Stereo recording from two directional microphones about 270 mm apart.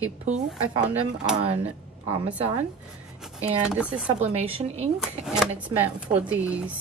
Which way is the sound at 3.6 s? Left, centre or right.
Centre.